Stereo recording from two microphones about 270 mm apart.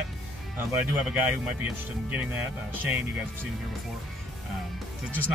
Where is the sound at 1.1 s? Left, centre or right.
Centre.